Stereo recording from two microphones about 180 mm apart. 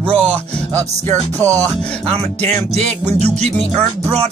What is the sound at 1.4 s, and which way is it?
Music, 20° right (ahead or behind).